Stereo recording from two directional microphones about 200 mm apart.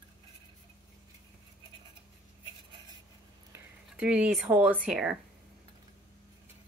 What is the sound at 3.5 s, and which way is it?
Speech, 5° right (ahead or behind).